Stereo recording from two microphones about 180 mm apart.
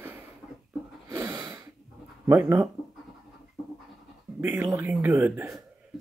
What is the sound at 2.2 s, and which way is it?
Speech, 15° right (ahead or behind).